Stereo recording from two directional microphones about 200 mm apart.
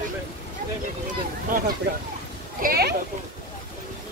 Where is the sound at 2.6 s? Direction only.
50° right (ahead or behind).